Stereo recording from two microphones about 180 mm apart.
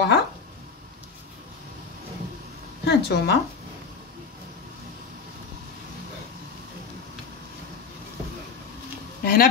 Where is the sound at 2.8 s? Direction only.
70° left (ahead or behind).